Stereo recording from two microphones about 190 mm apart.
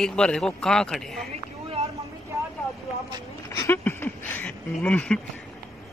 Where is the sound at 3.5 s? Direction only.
15° left (ahead or behind).